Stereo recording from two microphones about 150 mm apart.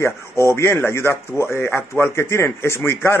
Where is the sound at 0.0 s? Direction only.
20° left (ahead or behind).